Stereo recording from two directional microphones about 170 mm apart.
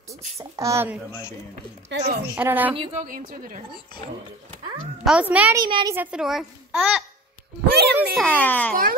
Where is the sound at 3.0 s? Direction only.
55° right (ahead or behind).